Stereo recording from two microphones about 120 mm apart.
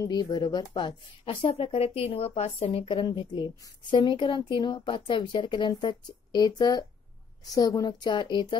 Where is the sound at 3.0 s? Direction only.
40° left (ahead or behind).